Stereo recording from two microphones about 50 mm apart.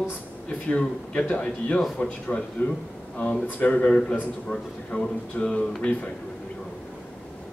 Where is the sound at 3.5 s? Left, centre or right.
Left.